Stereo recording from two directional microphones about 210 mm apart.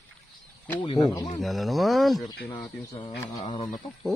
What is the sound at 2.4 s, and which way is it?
Speech, 15° left (ahead or behind).